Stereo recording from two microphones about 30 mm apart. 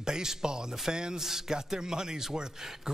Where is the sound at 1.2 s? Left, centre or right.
Centre.